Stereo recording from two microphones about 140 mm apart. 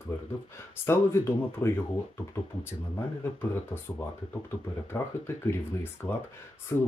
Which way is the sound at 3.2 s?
15° left (ahead or behind).